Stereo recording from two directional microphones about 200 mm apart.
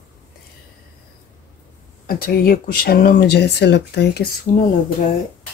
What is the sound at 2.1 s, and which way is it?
Speech, 50° left (ahead or behind).